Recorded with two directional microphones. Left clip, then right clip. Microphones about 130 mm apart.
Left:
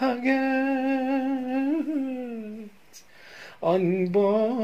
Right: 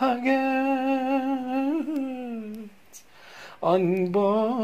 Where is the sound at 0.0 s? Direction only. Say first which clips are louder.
Right 1 dB; 15° left (ahead or behind).